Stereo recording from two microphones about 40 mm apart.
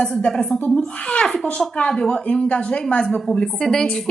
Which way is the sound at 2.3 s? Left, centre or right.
Left.